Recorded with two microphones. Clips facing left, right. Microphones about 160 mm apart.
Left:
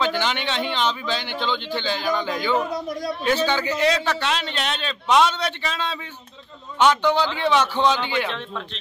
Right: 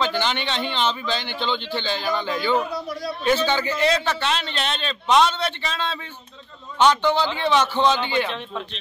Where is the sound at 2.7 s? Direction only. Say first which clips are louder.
Left 2 dB; 45° left (ahead or behind).